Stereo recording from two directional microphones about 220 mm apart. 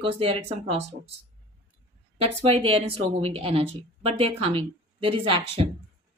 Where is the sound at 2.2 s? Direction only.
25° right (ahead or behind).